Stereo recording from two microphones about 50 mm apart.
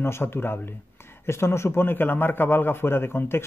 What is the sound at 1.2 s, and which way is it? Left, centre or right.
Speech, left.